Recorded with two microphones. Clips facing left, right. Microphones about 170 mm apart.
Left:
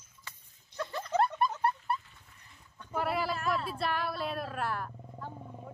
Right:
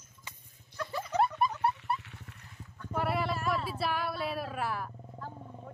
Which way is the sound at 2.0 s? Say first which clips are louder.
Right 9 dB; 75° right (ahead or behind).